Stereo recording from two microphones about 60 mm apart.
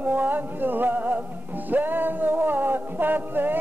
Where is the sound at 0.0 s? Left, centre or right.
Right.